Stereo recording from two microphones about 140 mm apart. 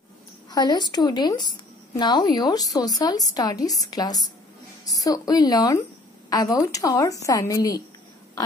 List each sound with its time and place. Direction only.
0.5 s a woman's voice: 30° left (ahead or behind)